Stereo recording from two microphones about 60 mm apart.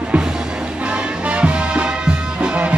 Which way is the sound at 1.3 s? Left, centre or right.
Centre.